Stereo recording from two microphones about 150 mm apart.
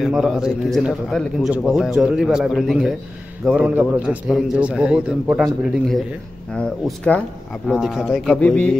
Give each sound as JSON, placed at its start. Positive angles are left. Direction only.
{"t": 0.0, "sound": "a man's voice", "side_deg": 0}
{"t": 7.0, "sound": "a man's voice", "side_deg": 5}